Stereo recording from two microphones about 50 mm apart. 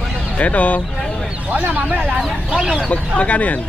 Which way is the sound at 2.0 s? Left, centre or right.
Centre.